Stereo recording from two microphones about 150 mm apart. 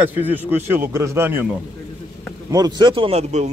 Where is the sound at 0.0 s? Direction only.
10° right (ahead or behind).